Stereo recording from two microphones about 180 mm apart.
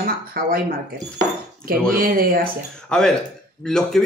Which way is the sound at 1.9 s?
55° right (ahead or behind).